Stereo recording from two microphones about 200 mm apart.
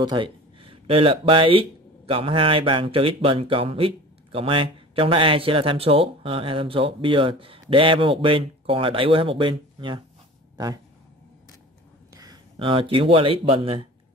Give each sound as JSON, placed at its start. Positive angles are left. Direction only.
{"t": 0.0, "sound": "speech", "side_deg": -25}
{"t": 12.1, "sound": "speech", "side_deg": -20}